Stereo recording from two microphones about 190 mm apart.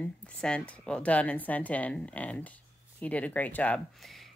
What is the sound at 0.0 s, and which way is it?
A woman's voice, 5° left (ahead or behind).